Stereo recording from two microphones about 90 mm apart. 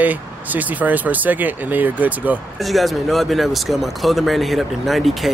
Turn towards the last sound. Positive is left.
turn(degrees=0)  # may be behind; listen again after turning